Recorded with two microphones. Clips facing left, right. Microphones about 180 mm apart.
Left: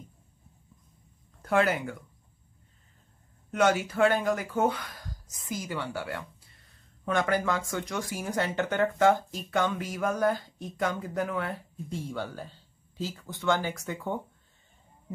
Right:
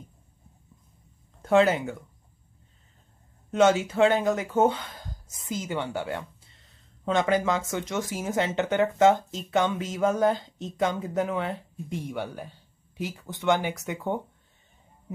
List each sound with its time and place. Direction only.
1.4 s speech: 25° right (ahead or behind)
3.5 s speech: 25° right (ahead or behind)